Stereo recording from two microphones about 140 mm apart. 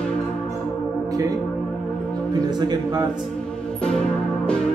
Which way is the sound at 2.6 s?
30° right (ahead or behind).